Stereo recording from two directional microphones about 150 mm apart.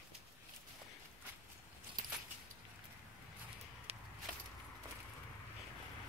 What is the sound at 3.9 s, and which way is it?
Walk, 40° right (ahead or behind).